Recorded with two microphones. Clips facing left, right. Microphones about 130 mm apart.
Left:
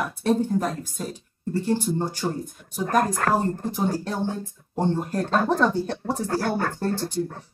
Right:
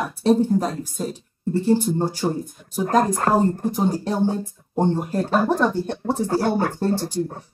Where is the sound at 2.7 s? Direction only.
25° right (ahead or behind); by 5.7 s 5° right (ahead or behind).